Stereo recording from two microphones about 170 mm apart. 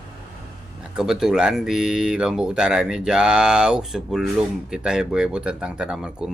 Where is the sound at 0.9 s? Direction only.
5° right (ahead or behind).